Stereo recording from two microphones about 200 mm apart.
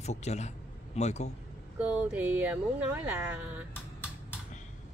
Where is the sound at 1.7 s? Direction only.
5° right (ahead or behind).